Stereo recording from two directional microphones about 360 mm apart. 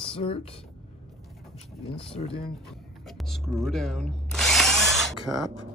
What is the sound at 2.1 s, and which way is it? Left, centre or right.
Speech, centre.